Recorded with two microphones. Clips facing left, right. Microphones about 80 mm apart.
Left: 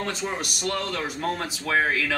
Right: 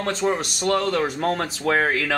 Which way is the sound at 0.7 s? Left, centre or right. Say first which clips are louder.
Right 8 dB; right.